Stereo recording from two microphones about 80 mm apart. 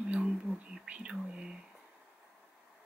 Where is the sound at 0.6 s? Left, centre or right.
Centre.